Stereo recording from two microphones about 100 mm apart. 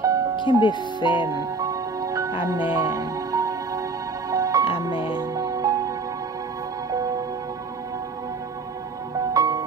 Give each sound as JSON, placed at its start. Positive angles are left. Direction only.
{"t": 0.0, "sound": "music", "side_deg": -35}
{"t": 0.4, "sound": "speech", "side_deg": 50}
{"t": 1.3, "sound": "music", "side_deg": -35}
{"t": 9.3, "sound": "music", "side_deg": -35}